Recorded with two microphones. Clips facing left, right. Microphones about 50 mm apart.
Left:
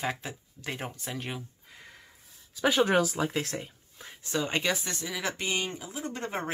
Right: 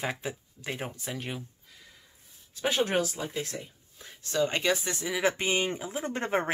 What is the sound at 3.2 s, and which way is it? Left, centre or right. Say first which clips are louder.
Speech: left 4 dB; left.